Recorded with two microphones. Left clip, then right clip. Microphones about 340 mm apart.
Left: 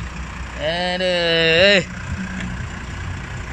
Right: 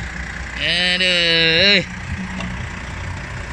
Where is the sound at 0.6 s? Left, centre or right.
Left.